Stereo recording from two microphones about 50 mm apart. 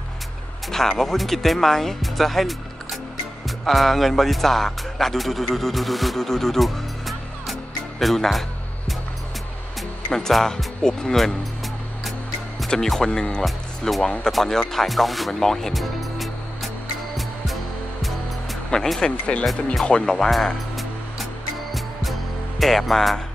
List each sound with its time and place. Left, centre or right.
0.7 s speech: centre
8.0 s music: centre
10.1 s speech: centre
12.6 s speech: centre
13.4 s speech: centre
14.3 s music: centre
18.9 s speech: left
19.8 s music: centre
22.6 s speech: centre